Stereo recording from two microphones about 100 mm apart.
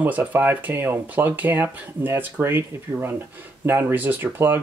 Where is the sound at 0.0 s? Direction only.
15° right (ahead or behind).